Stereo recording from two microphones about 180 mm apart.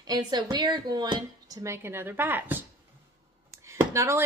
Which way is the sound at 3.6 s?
15° right (ahead or behind).